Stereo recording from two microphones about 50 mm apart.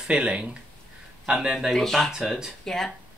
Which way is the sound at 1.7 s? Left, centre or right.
Centre.